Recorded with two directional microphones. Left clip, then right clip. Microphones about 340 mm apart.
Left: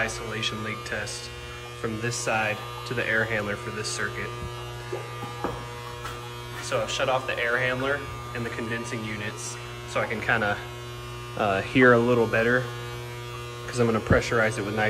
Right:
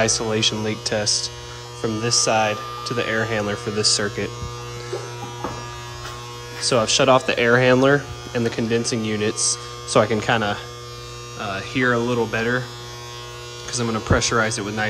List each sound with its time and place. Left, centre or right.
0.0 s speech: centre
6.6 s speech: centre
11.3 s hum: centre
13.7 s hum: centre